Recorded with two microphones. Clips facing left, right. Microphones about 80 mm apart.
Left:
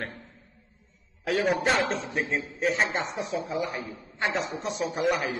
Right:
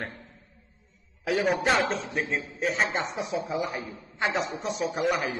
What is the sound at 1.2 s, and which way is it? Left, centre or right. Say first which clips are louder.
A man's voice: even; centre.